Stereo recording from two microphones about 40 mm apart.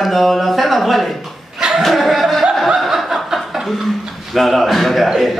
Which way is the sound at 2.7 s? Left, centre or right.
Centre.